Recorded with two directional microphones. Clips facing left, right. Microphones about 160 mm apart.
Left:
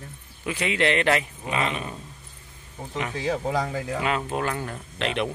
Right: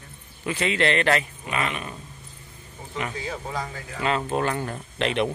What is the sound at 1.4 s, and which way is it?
Speech, 25° left (ahead or behind).